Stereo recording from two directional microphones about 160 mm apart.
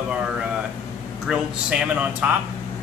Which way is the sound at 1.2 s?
5° right (ahead or behind).